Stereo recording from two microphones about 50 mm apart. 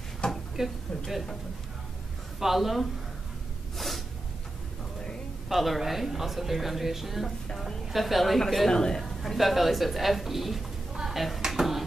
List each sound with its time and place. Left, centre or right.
0.2 s a sound: centre
0.6 s speech: centre
2.4 s speech: centre
3.7 s snort: centre
5.5 s speech: centre
7.2 s speech: centre
11.4 s music: centre